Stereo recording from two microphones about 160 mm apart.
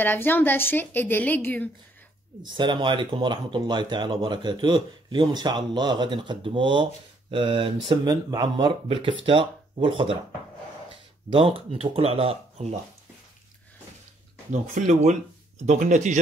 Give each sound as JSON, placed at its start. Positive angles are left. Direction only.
{"t": 0.0, "sound": "a woman's voice", "side_deg": 10}
{"t": 2.4, "sound": "speech", "side_deg": -30}
{"t": 11.3, "sound": "speech", "side_deg": -35}
{"t": 14.5, "sound": "speech", "side_deg": -50}